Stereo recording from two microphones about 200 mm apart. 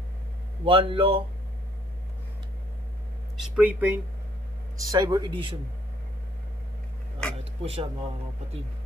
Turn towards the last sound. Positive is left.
turn(degrees=-30)  # may be behind; listen again after turning